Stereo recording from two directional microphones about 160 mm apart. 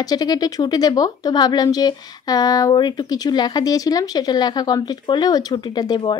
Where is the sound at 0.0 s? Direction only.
25° left (ahead or behind).